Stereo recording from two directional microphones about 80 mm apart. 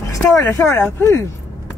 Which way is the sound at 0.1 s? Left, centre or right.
Left.